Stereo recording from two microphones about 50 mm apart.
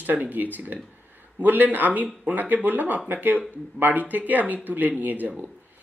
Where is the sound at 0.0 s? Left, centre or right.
Right.